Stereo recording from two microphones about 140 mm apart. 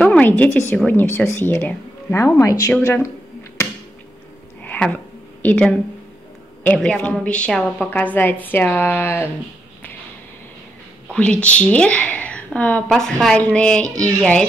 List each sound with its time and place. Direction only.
0.0 s a woman's voice: 10° left (ahead or behind)
4.6 s a sound: 10° left (ahead or behind)
6.6 s a woman's voice: 5° left (ahead or behind)
11.4 s a woman's voice: 10° left (ahead or behind)